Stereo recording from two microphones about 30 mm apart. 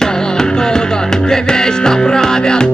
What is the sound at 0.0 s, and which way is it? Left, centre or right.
Music, left.